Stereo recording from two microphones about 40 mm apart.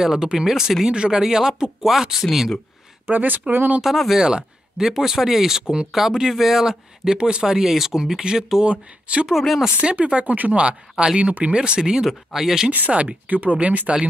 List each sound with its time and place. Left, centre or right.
0.0 s speech: centre
1.2 s speech: centre
3.1 s speech: right
3.8 s speech: centre
4.2 s speech: centre
8.6 s speech: right
9.3 s speech: centre
9.8 s speech: right
10.2 s speech: right
10.5 s speech: right; by 13.0 s centre
13.3 s speech: right